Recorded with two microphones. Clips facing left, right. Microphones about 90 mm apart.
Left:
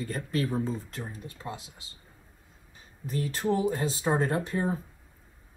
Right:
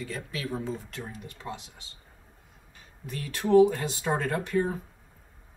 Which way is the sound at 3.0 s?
30° left (ahead or behind).